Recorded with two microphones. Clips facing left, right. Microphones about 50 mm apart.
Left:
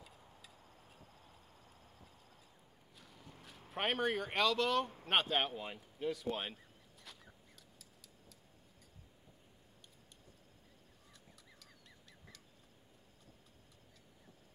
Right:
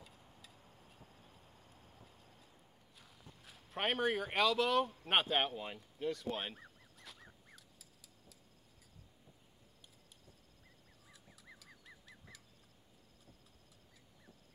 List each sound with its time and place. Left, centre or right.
3.0 s walk: centre
3.4 s speech: centre
7.0 s a sound: centre
11.6 s bird: centre